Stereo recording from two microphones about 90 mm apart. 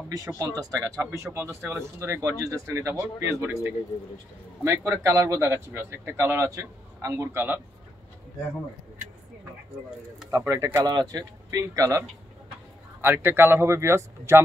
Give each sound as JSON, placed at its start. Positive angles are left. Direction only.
{"t": 0.1, "sound": "speech", "side_deg": -40}
{"t": 10.3, "sound": "speech", "side_deg": -35}
{"t": 13.0, "sound": "speech", "side_deg": -25}